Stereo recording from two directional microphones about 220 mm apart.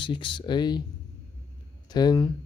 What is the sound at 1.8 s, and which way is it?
Speech, 20° left (ahead or behind).